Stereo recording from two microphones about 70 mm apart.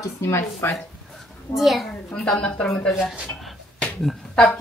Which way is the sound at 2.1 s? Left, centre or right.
Centre.